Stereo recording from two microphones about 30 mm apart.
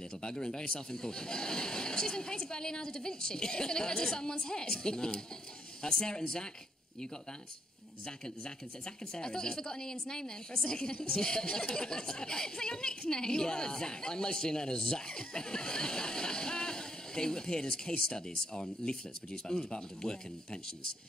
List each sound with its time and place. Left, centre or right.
0.2 s speech: left
8.0 s speech: left